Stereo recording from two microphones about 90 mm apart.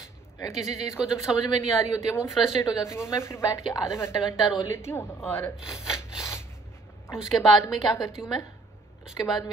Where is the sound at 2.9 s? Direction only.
30° left (ahead or behind).